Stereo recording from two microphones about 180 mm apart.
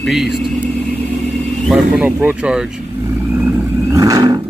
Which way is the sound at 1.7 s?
10° right (ahead or behind).